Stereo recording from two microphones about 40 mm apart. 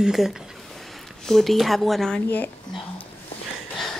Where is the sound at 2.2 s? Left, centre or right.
Left.